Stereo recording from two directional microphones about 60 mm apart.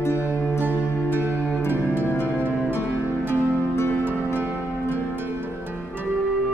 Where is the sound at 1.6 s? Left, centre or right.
Left.